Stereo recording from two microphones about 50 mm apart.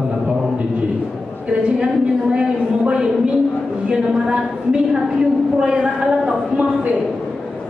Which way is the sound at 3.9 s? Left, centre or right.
Centre.